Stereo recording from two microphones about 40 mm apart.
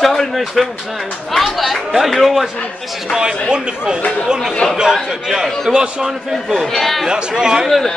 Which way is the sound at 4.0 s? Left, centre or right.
Left.